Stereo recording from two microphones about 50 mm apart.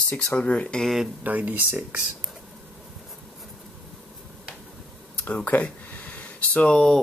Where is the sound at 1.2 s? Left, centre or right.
Right.